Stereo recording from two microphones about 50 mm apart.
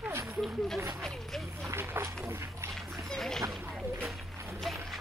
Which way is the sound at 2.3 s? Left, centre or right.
Right.